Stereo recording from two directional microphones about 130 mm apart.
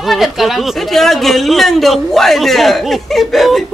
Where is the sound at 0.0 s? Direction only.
Centre (ahead or behind).